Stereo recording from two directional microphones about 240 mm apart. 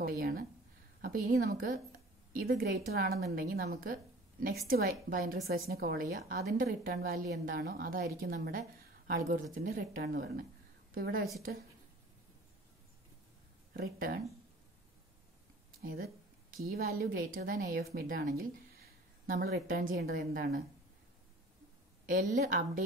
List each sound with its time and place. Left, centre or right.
0.0 s a sound: right
1.0 s a woman's voice: right
13.7 s a woman's voice: right
15.8 s a sound: right
17.0 s a woman's voice: right
22.0 s a woman's voice: right